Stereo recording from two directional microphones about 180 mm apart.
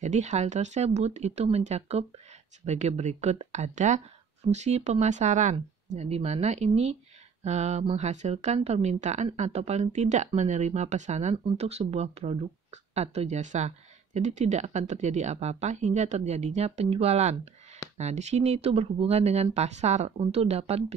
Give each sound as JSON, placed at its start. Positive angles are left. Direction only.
{"t": 0.0, "sound": "speech", "side_deg": -40}